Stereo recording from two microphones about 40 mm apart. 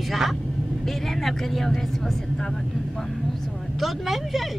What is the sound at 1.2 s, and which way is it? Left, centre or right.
Speech, centre.